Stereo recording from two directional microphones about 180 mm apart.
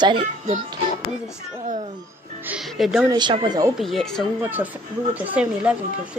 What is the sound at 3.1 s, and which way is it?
Speech, 25° right (ahead or behind).